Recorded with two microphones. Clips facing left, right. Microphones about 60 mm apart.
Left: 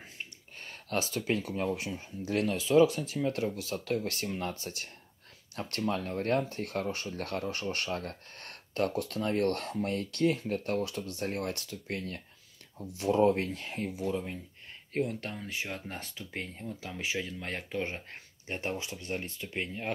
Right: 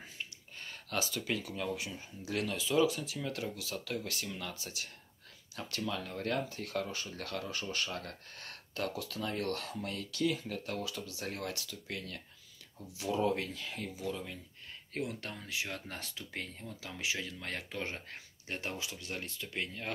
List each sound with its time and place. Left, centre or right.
0.2 s speech: left